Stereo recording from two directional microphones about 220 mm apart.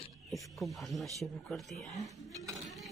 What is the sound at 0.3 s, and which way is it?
Speech, centre (ahead or behind).